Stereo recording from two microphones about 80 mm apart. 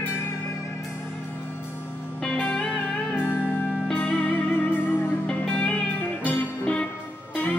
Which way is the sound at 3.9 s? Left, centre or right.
Centre.